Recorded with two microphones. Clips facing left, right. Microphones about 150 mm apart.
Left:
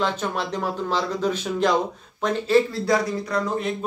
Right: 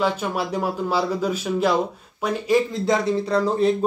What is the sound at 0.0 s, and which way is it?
Speech, 10° right (ahead or behind).